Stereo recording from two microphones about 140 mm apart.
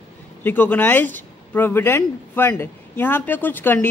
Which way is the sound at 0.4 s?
15° left (ahead or behind).